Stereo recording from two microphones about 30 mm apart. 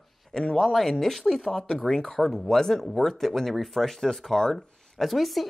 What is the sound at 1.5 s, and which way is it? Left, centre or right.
Speech, centre.